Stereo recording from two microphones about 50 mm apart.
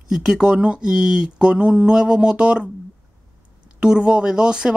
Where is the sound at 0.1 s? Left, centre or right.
Centre.